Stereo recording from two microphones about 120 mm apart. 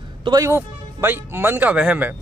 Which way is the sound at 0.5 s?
15° right (ahead or behind).